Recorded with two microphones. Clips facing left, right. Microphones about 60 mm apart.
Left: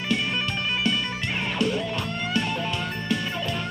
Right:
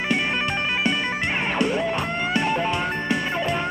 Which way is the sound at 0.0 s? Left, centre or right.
Right.